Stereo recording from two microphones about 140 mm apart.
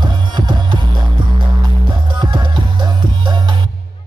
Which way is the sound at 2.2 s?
35° right (ahead or behind).